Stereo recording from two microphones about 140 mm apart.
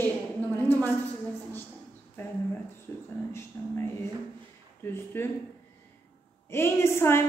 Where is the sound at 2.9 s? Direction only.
15° left (ahead or behind).